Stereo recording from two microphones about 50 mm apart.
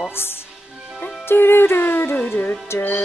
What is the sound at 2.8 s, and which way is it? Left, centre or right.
Music, left.